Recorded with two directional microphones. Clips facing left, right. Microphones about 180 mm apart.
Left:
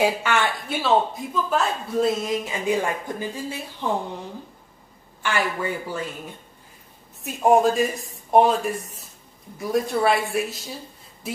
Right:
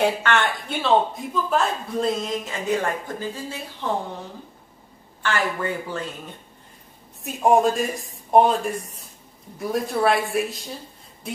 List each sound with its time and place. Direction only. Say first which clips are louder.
0.0 s speech: even; 5° left (ahead or behind)
5.2 s speech: even; 10° left (ahead or behind)
7.2 s a woman's voice: even; centre (ahead or behind)